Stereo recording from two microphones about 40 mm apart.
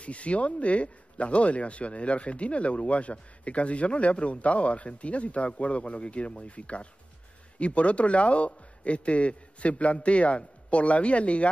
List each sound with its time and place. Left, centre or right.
0.0 s speech: left